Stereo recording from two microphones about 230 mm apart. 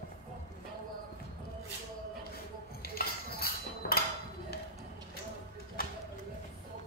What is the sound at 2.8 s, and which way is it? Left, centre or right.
Cutlery, left.